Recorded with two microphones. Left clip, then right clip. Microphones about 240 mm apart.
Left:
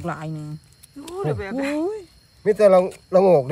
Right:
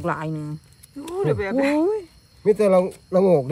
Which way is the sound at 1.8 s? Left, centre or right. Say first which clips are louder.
Right 4 dB; centre.